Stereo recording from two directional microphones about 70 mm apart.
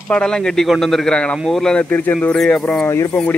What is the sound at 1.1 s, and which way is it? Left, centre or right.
Speech, centre.